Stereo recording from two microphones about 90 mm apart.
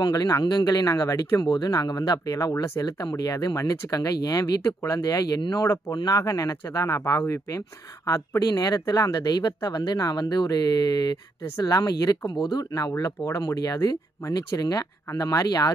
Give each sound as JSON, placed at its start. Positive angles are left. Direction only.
{"t": 0.0, "sound": "speech", "side_deg": 45}
{"t": 2.8, "sound": "speech", "side_deg": 45}